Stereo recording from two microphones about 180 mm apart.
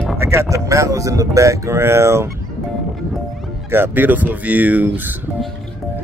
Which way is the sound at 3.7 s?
10° right (ahead or behind).